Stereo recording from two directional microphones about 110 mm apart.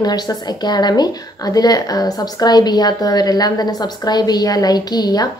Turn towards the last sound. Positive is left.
turn(degrees=35)  # may be behind; listen again after turning